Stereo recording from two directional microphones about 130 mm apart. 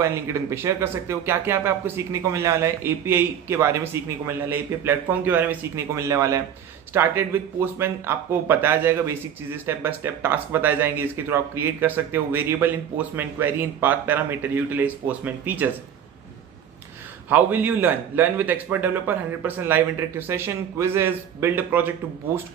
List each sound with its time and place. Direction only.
0.0 s speech: 20° right (ahead or behind)
17.3 s speech: 15° right (ahead or behind)